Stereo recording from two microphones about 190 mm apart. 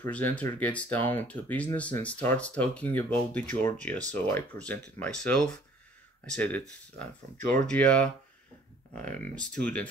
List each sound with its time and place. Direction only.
0.0 s speech: 10° left (ahead or behind)
7.6 s speech: 5° left (ahead or behind)